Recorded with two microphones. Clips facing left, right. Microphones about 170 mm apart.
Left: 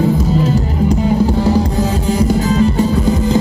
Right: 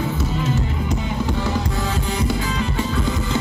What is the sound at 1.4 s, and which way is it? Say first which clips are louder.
Music: left 9 dB; 40° left (ahead or behind).